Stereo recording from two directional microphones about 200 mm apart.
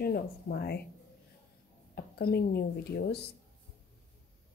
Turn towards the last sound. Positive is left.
turn(degrees=55)  # may be behind; listen again after turning